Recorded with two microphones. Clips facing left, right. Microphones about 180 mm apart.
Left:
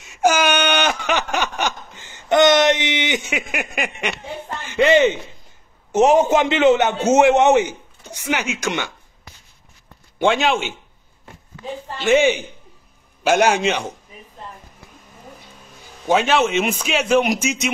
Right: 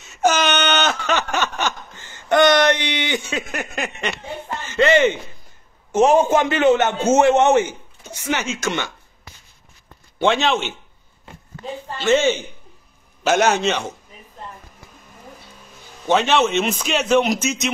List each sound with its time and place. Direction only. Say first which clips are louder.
0.0 s a sound: left 1 dB; 10° left (ahead or behind)
5.9 s a man's voice: left 1 dB; 15° left (ahead or behind)
10.1 s a man's voice: left 1 dB; 10° left (ahead or behind)
12.0 s a man's voice: left 1 dB; 15° left (ahead or behind)
16.1 s a man's voice: even; 5° left (ahead or behind)